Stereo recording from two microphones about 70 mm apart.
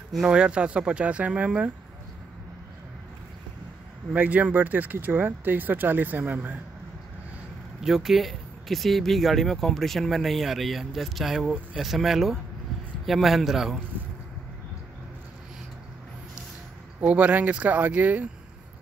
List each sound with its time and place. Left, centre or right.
0.1 s speech: centre
4.1 s speech: right
7.8 s speech: centre
17.0 s speech: right